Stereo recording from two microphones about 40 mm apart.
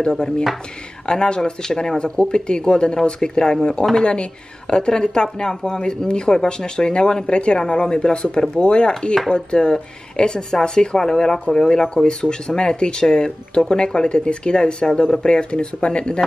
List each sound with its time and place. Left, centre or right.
0.1 s speech: centre
1.0 s speech: left